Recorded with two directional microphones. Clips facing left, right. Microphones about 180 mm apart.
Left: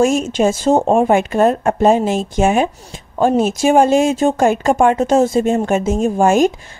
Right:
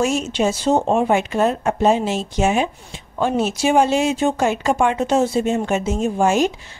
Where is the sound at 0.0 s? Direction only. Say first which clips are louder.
Left 5 dB; 50° left (ahead or behind).